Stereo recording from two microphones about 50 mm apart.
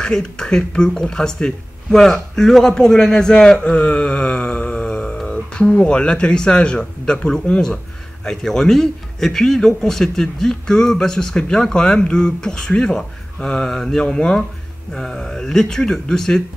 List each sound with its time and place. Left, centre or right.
0.0 s a man's voice: centre
3.6 s a sound: left
5.1 s a man's voice: centre